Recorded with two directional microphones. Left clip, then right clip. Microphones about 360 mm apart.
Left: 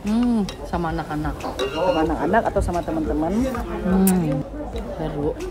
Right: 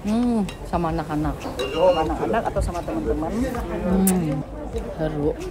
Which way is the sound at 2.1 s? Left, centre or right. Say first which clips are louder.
Left 3 dB; left.